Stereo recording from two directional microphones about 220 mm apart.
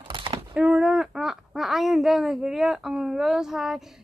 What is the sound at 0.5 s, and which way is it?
A woman's voice, 5° right (ahead or behind).